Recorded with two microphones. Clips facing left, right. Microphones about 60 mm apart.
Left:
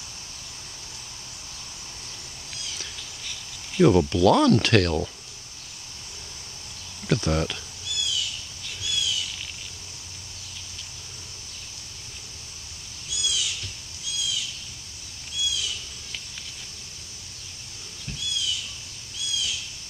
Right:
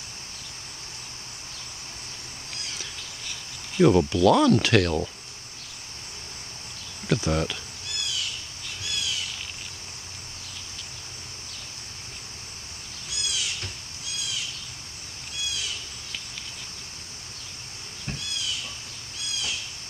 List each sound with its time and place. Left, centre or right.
3.7 s speech: centre
7.1 s speech: centre
7.8 s owl: right
8.8 s bird: right
13.1 s owl: right
14.1 s bird: right
15.4 s owl: right
18.0 s a sound: right
19.1 s owl: right